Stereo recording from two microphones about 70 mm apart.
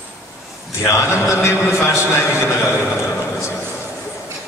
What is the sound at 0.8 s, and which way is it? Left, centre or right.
A man's voice, left.